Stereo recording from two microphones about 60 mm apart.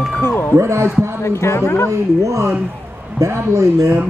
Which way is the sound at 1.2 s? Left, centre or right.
Left.